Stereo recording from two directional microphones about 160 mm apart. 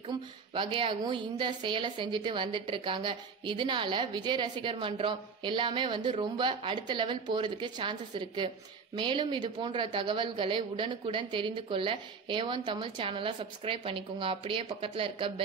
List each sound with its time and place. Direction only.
0.6 s speech: 30° right (ahead or behind)